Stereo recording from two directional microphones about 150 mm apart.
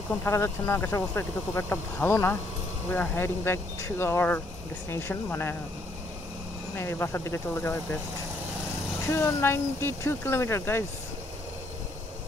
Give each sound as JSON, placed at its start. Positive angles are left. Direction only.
{"t": 0.2, "sound": "speech", "side_deg": 15}
{"t": 6.8, "sound": "speech", "side_deg": 15}
{"t": 9.1, "sound": "speech", "side_deg": 15}